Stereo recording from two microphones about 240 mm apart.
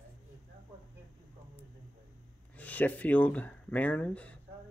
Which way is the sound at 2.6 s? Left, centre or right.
Centre.